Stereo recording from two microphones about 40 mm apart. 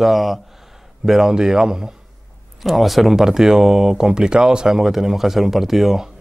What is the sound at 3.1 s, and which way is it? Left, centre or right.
Speech, centre.